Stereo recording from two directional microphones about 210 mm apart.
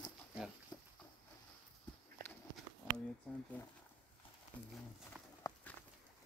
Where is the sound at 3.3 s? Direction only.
5° left (ahead or behind).